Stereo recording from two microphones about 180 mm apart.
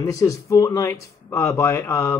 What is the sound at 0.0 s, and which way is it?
Speech, 20° left (ahead or behind).